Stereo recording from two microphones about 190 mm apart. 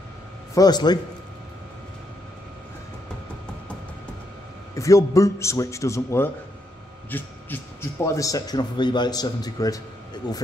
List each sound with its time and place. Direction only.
0.6 s speech: 20° left (ahead or behind)
4.7 s a man's voice: 15° left (ahead or behind)
7.1 s a sound: 10° left (ahead or behind)
8.0 s speech: 15° left (ahead or behind)